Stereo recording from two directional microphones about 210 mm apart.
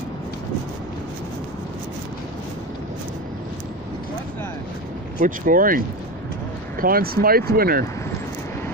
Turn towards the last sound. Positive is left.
turn(degrees=-45)  # may be behind; listen again after turning